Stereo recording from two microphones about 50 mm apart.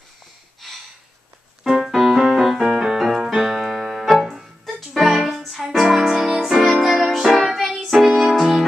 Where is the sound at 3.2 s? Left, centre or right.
Centre.